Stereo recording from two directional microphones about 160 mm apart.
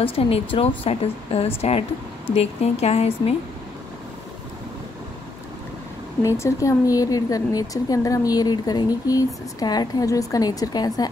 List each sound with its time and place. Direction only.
0.0 s a woman's voice: 35° left (ahead or behind)
6.2 s a woman's voice: 20° left (ahead or behind)